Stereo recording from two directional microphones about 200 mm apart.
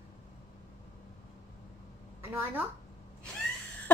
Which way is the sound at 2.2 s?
10° right (ahead or behind).